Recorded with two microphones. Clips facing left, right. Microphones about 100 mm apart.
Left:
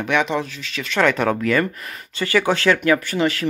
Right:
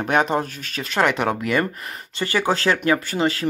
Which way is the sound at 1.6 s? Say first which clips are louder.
Left 1 dB; 30° right (ahead or behind).